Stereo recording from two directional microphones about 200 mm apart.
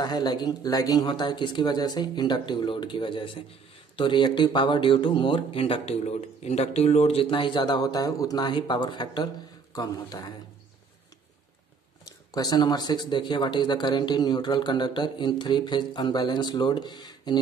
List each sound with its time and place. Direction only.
0.0 s speech: 20° left (ahead or behind)
12.0 s speech: 20° left (ahead or behind)